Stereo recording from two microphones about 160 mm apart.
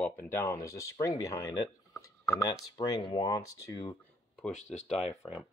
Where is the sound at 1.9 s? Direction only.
20° left (ahead or behind).